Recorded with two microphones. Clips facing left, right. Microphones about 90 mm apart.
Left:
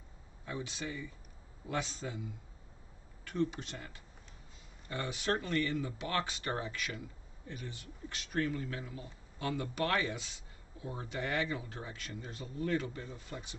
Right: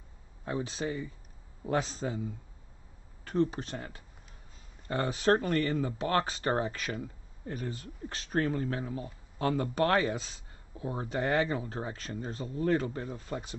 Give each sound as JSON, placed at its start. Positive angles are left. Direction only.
{"t": 0.5, "sound": "speech", "side_deg": -40}
{"t": 3.3, "sound": "speech", "side_deg": -35}